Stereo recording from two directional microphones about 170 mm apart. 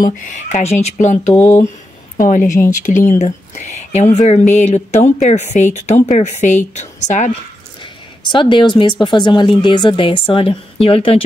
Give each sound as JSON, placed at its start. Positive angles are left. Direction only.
{"t": 0.0, "sound": "speech", "side_deg": 45}
{"t": 7.8, "sound": "speech", "side_deg": 30}